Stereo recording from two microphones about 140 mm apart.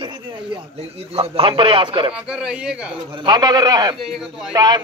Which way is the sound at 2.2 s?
5° right (ahead or behind).